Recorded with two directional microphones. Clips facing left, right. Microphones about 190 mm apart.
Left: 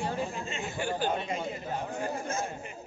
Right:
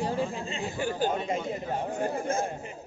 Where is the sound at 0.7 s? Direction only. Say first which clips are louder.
Right 2 dB; 40° right (ahead or behind).